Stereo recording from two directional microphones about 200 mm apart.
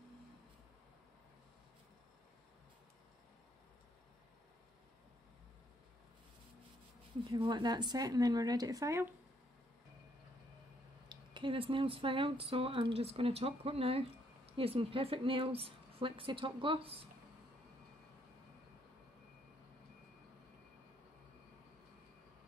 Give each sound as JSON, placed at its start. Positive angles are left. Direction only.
{"t": 7.3, "sound": "speech", "side_deg": -20}
{"t": 11.1, "sound": "speech", "side_deg": -25}